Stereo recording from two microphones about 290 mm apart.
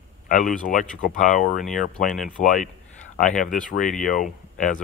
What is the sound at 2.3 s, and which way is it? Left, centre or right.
Speech, left.